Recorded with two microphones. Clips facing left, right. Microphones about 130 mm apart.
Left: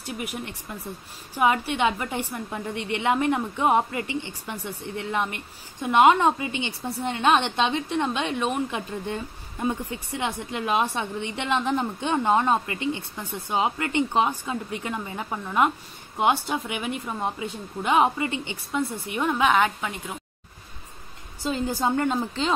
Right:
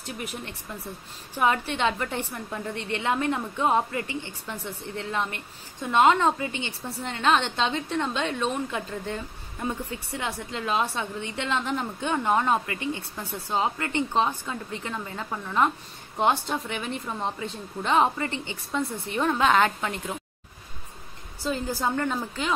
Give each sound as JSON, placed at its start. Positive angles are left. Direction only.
{"t": 0.0, "sound": "a woman's voice", "side_deg": 10}
{"t": 21.5, "sound": "a woman's voice", "side_deg": 20}